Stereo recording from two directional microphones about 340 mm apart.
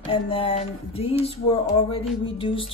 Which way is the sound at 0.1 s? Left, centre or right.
Centre.